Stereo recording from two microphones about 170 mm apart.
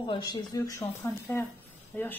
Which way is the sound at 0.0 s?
30° left (ahead or behind).